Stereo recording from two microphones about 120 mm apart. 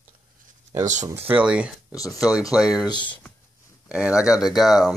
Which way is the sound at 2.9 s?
40° left (ahead or behind).